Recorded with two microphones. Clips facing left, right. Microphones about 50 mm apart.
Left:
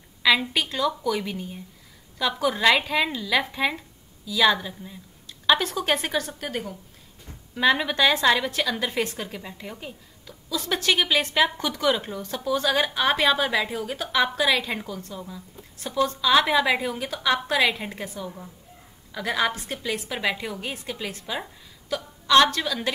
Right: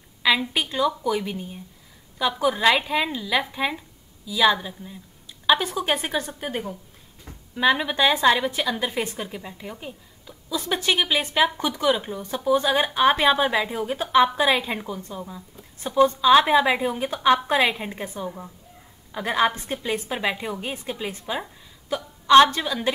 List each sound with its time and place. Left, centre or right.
0.5 s a woman's voice: centre
7.5 s a woman's voice: centre
7.9 s speech: centre
9.4 s a woman's voice: centre
10.2 s a woman's voice: right